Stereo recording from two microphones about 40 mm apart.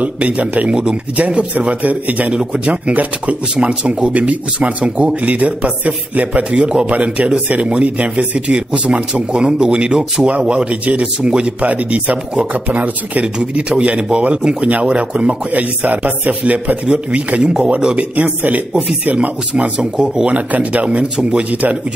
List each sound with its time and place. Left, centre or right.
0.0 s speech: right
1.5 s speech: right
1.8 s speech: right
2.3 s speech: right
2.7 s speech: right
3.5 s speech: right
15.5 s speech: right
17.9 s speech: right
19.8 s speech: centre
20.2 s speech: right
21.0 s speech: right